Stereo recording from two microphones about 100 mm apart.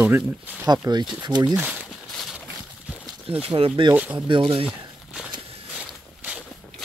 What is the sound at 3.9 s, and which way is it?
Speech, 15° right (ahead or behind).